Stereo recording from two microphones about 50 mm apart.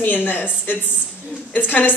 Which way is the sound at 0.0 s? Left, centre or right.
Left.